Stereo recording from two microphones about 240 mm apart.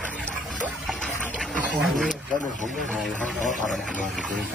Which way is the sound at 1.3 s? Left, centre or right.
Centre.